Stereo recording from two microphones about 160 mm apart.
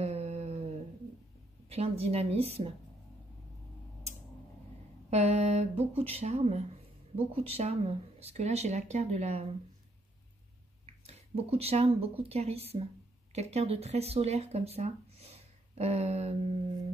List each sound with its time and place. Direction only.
0.0 s a sound: 40° right (ahead or behind)
1.7 s speech: 40° right (ahead or behind)
5.1 s speech: 40° right (ahead or behind)
10.9 s speech: 40° right (ahead or behind)